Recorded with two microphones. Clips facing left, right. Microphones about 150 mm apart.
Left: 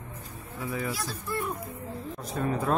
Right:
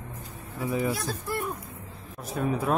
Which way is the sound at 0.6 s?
20° right (ahead or behind).